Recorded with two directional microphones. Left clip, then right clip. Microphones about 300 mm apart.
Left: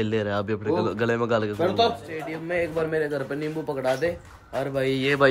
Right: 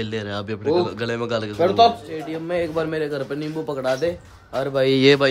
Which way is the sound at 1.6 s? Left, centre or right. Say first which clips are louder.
Right 9 dB; right.